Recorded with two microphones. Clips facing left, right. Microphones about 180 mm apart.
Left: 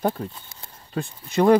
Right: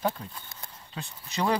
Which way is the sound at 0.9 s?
50° left (ahead or behind).